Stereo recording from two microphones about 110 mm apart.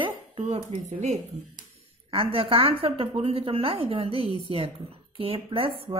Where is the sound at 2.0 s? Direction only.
60° right (ahead or behind).